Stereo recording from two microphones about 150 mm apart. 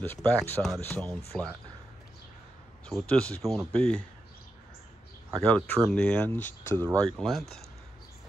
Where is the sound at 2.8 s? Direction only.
5° left (ahead or behind).